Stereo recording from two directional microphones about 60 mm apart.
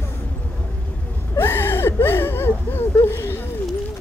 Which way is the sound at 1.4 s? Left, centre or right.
Left.